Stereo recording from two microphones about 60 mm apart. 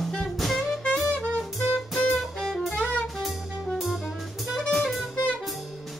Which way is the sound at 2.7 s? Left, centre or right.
Left.